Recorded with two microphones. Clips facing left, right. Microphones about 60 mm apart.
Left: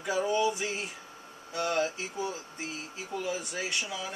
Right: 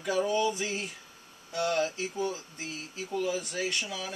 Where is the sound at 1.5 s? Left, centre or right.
Centre.